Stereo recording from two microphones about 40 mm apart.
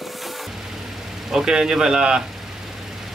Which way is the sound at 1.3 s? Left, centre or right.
Centre.